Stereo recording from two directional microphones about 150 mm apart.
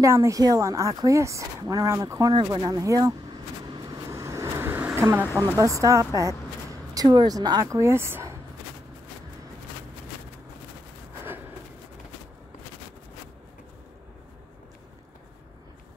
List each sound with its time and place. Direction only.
0.0 s speech: 20° right (ahead or behind)
3.6 s vehicle: 25° right (ahead or behind)
5.4 s speech: 20° right (ahead or behind)